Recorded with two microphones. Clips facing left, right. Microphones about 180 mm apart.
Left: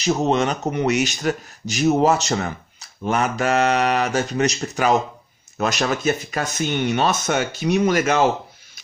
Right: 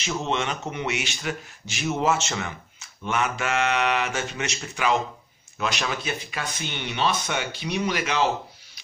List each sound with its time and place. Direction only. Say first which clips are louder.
0.0 s speech: left 8 dB; 40° left (ahead or behind)